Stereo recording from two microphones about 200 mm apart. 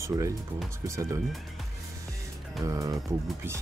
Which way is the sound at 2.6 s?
20° right (ahead or behind).